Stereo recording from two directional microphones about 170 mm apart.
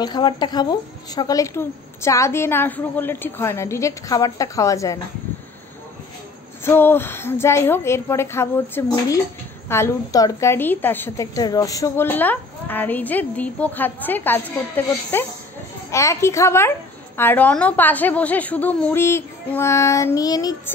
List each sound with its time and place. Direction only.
0.0 s a woman's voice: 25° left (ahead or behind)
6.6 s a woman's voice: 15° left (ahead or behind)